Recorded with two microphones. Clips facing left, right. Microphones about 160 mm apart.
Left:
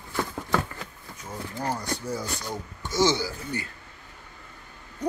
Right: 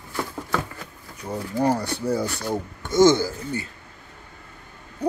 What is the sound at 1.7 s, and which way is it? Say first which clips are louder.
Speech: right 7 dB; 60° right (ahead or behind).